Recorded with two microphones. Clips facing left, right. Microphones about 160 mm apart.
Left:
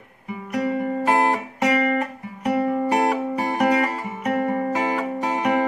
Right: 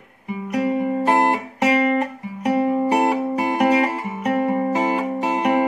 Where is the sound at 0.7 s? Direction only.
20° right (ahead or behind).